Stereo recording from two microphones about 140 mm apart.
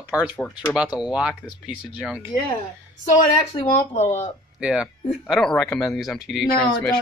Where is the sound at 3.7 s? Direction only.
60° left (ahead or behind).